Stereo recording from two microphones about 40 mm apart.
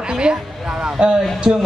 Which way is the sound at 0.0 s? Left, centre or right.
Right.